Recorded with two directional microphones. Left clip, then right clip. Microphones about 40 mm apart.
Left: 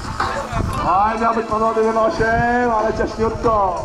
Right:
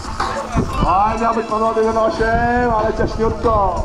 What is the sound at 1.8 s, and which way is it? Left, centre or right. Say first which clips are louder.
Speech: right 1 dB; centre.